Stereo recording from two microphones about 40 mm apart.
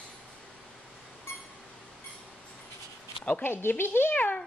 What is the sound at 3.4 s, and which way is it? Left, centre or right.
Speech, left.